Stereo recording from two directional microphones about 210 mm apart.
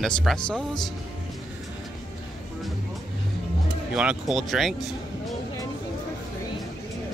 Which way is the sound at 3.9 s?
5° right (ahead or behind).